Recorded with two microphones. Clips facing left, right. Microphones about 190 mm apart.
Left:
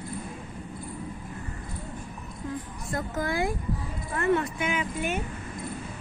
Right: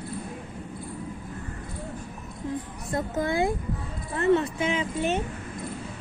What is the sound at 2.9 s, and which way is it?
Speech, 25° right (ahead or behind).